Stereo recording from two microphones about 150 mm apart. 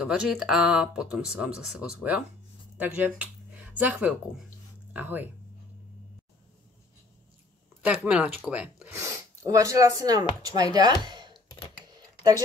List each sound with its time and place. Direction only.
0.0 s speech: 5° right (ahead or behind)
7.8 s speech: 5° right (ahead or behind)
9.0 s speech: 20° right (ahead or behind)